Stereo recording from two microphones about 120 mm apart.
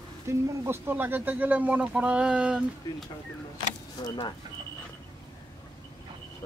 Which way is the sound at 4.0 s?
40° left (ahead or behind).